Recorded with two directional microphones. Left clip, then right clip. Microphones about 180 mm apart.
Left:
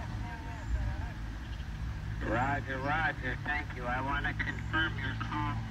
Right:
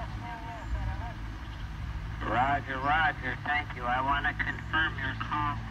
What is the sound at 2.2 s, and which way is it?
Speech, 30° right (ahead or behind).